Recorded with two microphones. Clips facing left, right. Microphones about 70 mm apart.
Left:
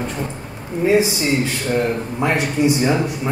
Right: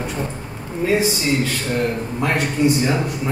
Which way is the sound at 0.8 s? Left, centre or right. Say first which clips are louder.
Left 3 dB; centre.